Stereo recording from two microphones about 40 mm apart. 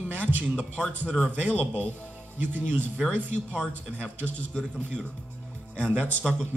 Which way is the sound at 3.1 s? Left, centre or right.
Right.